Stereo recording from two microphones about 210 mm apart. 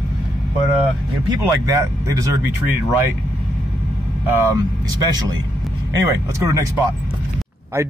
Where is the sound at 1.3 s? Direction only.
15° right (ahead or behind).